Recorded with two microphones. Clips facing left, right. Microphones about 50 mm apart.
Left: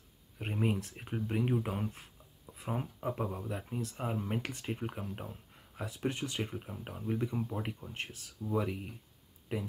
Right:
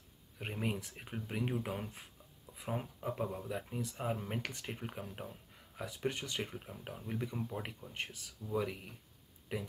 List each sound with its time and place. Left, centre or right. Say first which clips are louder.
0.4 s speech: left 5 dB; centre
6.0 s speech: left 3 dB; centre
6.3 s speech: left 3 dB; centre